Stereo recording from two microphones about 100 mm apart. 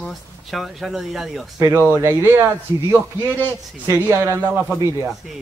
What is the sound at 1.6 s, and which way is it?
A man's voice, 30° right (ahead or behind).